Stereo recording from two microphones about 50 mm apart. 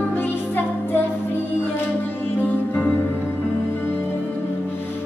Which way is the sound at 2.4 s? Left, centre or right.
Left.